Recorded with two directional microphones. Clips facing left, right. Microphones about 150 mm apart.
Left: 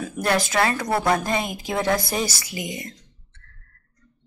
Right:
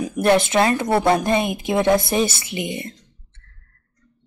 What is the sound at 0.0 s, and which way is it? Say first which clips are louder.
A woman's voice: right 6 dB; 20° right (ahead or behind).